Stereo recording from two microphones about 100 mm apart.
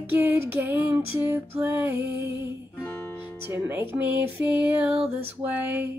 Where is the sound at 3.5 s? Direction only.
20° right (ahead or behind).